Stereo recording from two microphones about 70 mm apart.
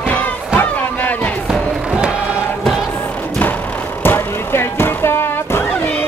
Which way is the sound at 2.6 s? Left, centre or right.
Centre.